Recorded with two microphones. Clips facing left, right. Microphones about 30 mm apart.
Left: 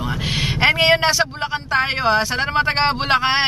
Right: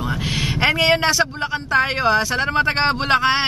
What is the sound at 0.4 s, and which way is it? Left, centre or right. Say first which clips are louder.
Speech: left 2 dB; centre.